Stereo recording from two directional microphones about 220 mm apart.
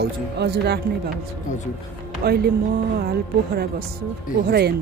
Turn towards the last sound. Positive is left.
turn(degrees=-45)  # may be behind; listen again after turning